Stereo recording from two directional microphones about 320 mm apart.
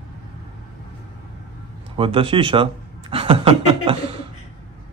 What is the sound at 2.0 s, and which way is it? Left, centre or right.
Speech, centre.